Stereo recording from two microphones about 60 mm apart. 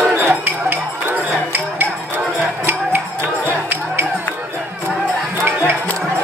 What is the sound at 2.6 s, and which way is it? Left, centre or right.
Music, right.